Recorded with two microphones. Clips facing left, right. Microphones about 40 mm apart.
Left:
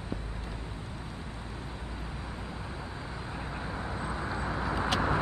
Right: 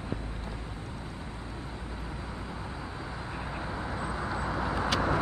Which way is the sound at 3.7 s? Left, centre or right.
Centre.